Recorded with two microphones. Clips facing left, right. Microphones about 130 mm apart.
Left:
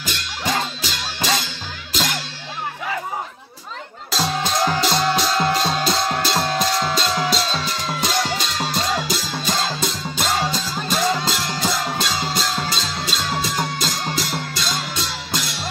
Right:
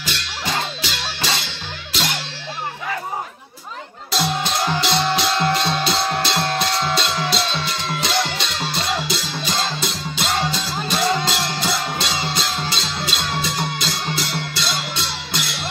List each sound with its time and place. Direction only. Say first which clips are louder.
0.0 s music: left 1 dB; 45° left (ahead or behind)
4.2 s music: left 1 dB; 40° left (ahead or behind)
6.4 s music: left 1 dB; centre (ahead or behind)
7.0 s music: left 1 dB; 40° left (ahead or behind)